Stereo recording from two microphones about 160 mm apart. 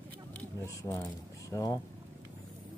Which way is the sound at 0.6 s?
15° left (ahead or behind).